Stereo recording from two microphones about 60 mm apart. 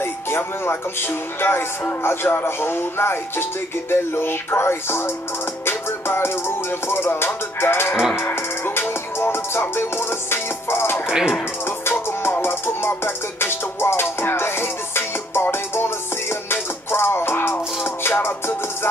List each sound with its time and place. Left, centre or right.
0.0 s music: left
11.1 s speech: centre
11.6 s music: left